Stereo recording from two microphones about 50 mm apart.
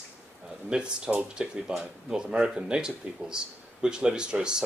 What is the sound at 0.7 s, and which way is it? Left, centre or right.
Speech, centre.